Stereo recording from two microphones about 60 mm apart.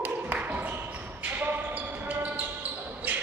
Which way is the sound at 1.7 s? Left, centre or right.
Right.